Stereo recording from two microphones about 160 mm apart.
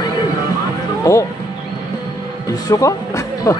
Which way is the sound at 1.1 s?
20° left (ahead or behind).